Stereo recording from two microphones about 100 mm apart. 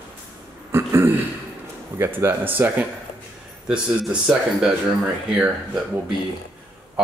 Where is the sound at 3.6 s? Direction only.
5° right (ahead or behind).